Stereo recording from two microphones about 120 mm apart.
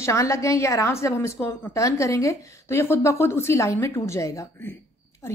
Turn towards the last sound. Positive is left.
turn(degrees=20)  # may be behind; listen again after turning